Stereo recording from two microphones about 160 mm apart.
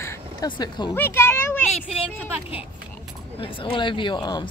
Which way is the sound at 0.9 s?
15° left (ahead or behind).